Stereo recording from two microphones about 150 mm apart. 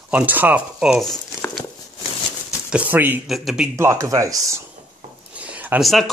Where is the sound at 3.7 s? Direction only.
20° right (ahead or behind).